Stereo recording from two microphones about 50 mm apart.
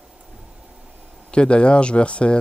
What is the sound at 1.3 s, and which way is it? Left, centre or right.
Speech, left.